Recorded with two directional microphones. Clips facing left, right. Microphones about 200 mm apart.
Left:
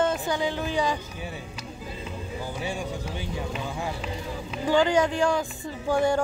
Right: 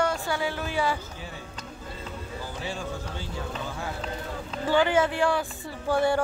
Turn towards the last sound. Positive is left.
turn(degrees=15)  # may be behind; listen again after turning